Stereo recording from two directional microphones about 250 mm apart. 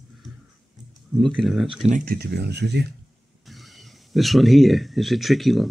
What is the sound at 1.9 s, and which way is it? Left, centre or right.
Speech, right.